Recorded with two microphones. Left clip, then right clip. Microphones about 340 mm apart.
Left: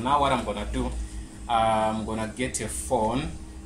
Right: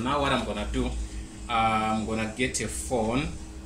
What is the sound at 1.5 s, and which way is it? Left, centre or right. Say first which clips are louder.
A man's voice: left 2 dB; centre.